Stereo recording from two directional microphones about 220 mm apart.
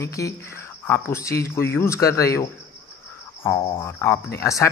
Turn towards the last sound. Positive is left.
turn(degrees=15)  # may be behind; listen again after turning